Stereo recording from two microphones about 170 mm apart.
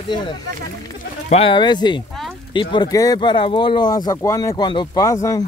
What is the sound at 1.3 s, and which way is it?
Speech, 30° left (ahead or behind).